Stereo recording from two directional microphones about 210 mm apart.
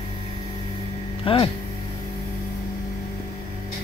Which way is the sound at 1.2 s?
25° left (ahead or behind).